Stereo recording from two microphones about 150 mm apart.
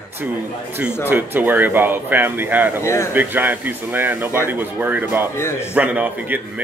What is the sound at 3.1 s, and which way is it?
A man's voice, 10° right (ahead or behind).